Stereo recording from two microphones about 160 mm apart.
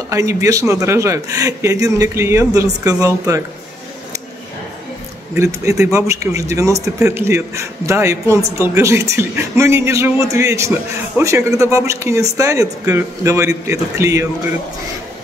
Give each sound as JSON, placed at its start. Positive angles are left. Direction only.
{"t": 0.1, "sound": "speech", "side_deg": -20}
{"t": 5.3, "sound": "speech", "side_deg": -20}